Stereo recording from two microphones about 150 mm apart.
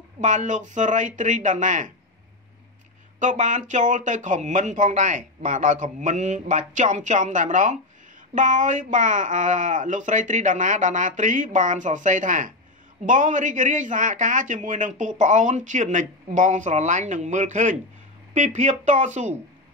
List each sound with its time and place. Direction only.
0.2 s a man's voice: 55° right (ahead or behind)
3.2 s a man's voice: 55° right (ahead or behind)